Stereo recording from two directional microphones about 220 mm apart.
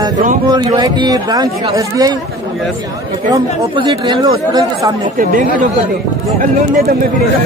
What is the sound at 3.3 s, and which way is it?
Speech, 20° right (ahead or behind).